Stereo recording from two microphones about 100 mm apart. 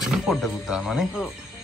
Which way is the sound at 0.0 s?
5° right (ahead or behind).